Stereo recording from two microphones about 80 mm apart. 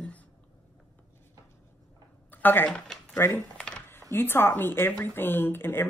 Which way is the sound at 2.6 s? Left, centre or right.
Centre.